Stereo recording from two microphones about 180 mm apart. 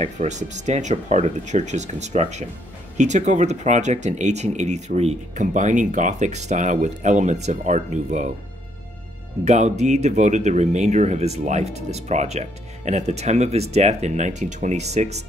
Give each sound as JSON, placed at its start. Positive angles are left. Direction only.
{"t": 0.0, "sound": "speech", "side_deg": -40}
{"t": 9.4, "sound": "speech", "side_deg": -40}